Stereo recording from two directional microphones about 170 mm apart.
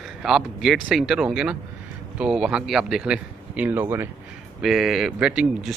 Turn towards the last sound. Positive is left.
turn(degrees=-5)  # may be behind; listen again after turning